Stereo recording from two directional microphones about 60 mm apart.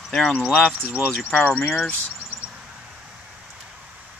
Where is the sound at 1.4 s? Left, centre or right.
Left.